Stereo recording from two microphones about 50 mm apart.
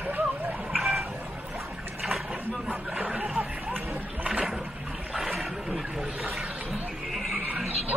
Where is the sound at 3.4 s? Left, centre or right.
Right.